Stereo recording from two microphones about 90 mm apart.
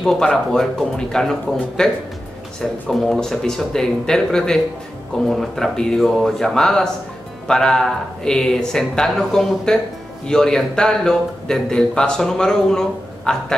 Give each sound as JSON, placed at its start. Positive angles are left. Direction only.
{"t": 0.0, "sound": "a man's voice", "side_deg": 5}